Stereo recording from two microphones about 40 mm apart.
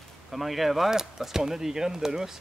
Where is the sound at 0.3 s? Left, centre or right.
Centre.